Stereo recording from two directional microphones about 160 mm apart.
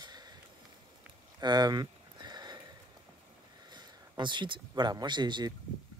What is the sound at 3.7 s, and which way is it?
Speech, 30° right (ahead or behind).